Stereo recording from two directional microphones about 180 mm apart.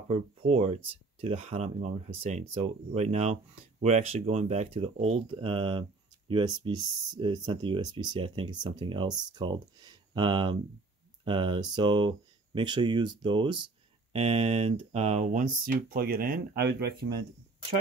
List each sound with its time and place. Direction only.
0.1 s speech: 35° right (ahead or behind); by 17.1 s 60° right (ahead or behind)